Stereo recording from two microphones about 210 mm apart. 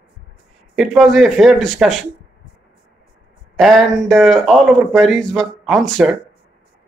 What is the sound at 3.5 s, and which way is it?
Speech, centre (ahead or behind).